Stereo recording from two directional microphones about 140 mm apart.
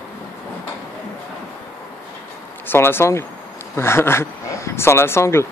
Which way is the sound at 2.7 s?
15° left (ahead or behind).